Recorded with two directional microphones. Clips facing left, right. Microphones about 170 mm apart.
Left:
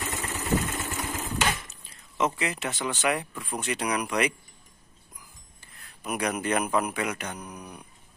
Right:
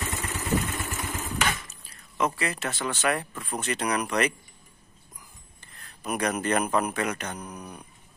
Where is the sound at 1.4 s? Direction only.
25° left (ahead or behind).